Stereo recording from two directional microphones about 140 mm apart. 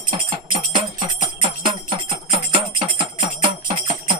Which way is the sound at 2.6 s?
35° right (ahead or behind).